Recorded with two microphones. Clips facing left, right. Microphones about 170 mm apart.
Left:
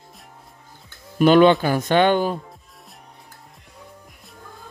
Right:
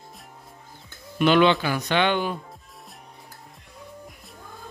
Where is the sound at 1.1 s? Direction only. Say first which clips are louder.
Left 5 dB; 45° left (ahead or behind).